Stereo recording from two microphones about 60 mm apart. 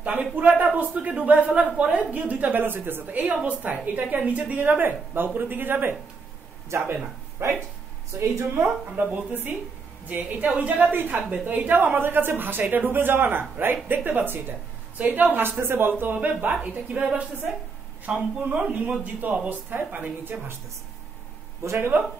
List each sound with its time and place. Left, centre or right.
0.0 s a sound: right
0.6 s a woman's voice: right
8.6 s a woman's voice: right
21.7 s a woman's voice: right